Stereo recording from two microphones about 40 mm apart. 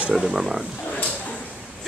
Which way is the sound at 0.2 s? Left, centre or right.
Centre.